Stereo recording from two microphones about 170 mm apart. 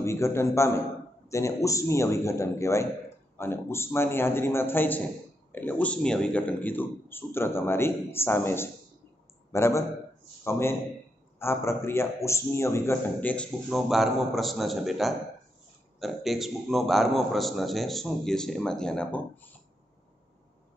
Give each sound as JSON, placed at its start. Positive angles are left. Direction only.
{"t": 0.0, "sound": "a man's voice", "side_deg": 15}
{"t": 13.7, "sound": "a man's voice", "side_deg": 0}